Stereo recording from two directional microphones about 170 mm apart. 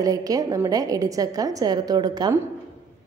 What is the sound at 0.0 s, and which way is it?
A woman's voice, 20° right (ahead or behind).